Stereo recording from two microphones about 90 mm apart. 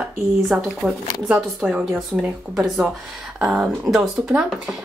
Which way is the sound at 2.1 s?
30° right (ahead or behind).